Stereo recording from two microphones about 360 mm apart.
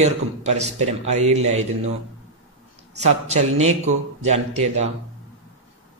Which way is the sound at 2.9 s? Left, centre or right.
Centre.